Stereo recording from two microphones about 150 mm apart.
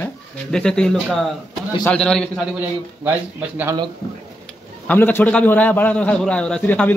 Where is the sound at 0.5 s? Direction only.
5° left (ahead or behind).